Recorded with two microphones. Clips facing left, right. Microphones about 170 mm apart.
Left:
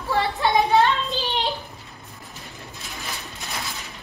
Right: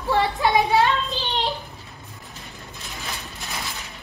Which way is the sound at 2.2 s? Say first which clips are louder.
Left 1 dB; centre (ahead or behind).